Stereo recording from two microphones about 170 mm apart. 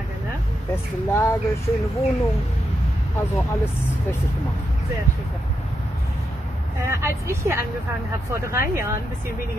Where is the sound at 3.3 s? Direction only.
15° left (ahead or behind).